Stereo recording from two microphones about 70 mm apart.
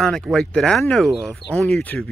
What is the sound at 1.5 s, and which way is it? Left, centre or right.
Speech, centre.